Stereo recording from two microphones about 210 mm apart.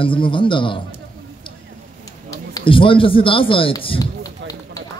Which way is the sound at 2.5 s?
25° left (ahead or behind).